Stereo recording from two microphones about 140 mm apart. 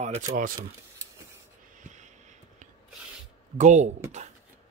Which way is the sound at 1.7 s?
60° right (ahead or behind).